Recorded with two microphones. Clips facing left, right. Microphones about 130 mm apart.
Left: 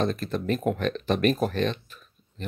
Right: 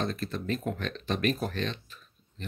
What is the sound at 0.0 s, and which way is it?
Speech, 55° left (ahead or behind).